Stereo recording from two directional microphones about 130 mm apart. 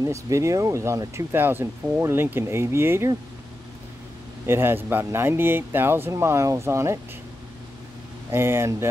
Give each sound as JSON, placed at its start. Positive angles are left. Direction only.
{"t": 0.0, "sound": "speech", "side_deg": -25}
{"t": 4.5, "sound": "speech", "side_deg": -20}
{"t": 8.3, "sound": "speech", "side_deg": -20}